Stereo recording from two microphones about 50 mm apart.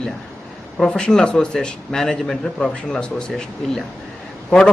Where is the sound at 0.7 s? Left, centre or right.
Centre.